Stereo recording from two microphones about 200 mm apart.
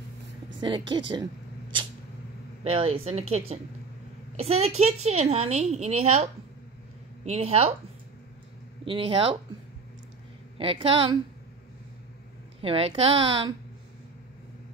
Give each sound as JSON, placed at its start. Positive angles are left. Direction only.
{"t": 0.6, "sound": "a sound", "side_deg": -25}
{"t": 2.6, "sound": "a woman's voice", "side_deg": -30}
{"t": 7.2, "sound": "a woman's voice", "side_deg": -30}
{"t": 8.8, "sound": "a woman's voice", "side_deg": -25}
{"t": 10.6, "sound": "a woman's voice", "side_deg": -25}
{"t": 12.6, "sound": "a woman's voice", "side_deg": -25}